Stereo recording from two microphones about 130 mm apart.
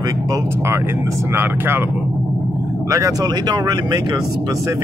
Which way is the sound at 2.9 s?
25° right (ahead or behind).